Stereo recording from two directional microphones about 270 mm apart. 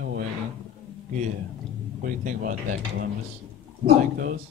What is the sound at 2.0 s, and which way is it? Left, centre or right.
Speech, right.